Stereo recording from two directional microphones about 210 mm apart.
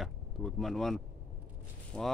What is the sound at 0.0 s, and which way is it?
Speech, centre (ahead or behind).